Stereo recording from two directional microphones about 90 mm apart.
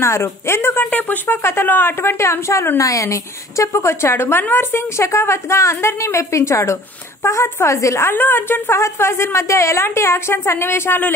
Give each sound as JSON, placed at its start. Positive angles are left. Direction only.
{"t": 0.0, "sound": "a woman's voice", "side_deg": 30}